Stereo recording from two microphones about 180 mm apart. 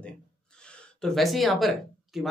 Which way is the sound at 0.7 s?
Centre (ahead or behind).